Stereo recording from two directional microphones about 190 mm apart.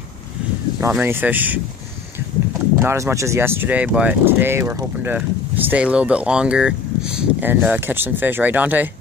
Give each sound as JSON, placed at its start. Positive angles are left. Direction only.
{"t": 0.7, "sound": "speech", "side_deg": -10}
{"t": 2.8, "sound": "speech", "side_deg": -15}